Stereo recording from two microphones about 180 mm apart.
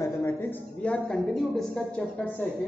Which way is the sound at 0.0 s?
15° left (ahead or behind).